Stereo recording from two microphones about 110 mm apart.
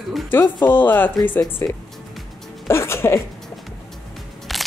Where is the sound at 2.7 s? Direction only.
25° left (ahead or behind).